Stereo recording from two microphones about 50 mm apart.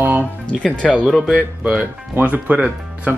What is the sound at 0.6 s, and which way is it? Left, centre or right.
Speech, left.